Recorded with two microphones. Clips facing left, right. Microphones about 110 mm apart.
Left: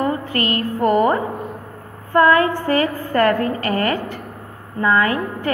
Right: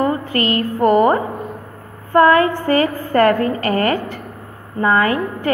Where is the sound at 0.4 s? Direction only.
30° right (ahead or behind).